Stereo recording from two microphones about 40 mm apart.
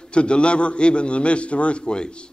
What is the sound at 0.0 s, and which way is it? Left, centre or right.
A man's voice, left.